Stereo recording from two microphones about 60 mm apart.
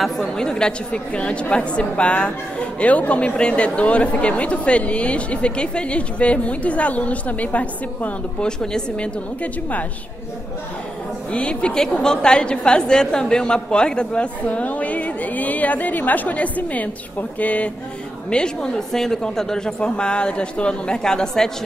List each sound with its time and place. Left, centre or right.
0.0 s a woman's voice: centre; by 8.5 s left
8.5 s speech: centre
11.3 s a woman's voice: centre
18.3 s speech: centre